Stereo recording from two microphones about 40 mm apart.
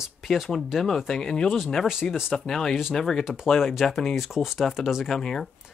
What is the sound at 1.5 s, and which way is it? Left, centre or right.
Speech, centre.